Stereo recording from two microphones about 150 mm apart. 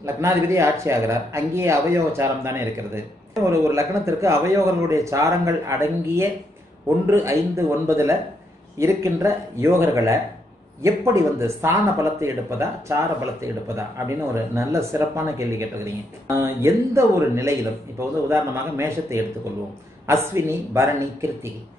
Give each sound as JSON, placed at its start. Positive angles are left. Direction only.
{"t": 0.0, "sound": "a man's voice", "side_deg": -20}